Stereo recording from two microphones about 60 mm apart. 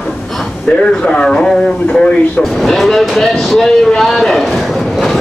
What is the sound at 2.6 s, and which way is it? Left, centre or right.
A man's voice, centre.